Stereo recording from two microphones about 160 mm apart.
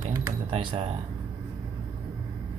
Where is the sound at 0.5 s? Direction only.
35° right (ahead or behind).